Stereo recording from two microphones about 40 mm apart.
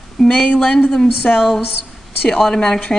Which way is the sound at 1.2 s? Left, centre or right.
Left.